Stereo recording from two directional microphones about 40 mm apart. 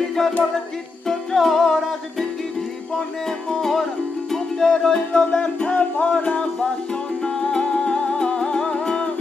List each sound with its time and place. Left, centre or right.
0.2 s music: centre
3.3 s music: centre
5.1 s music: left